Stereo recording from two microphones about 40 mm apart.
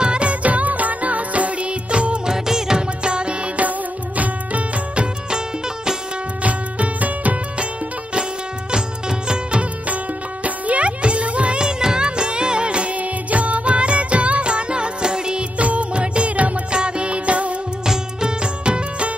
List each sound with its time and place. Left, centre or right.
0.0 s music: right
2.2 s music: centre
3.0 s music: right
4.2 s music: right
6.4 s music: right
9.3 s music: right
15.5 s music: right
16.7 s music: right
17.8 s music: right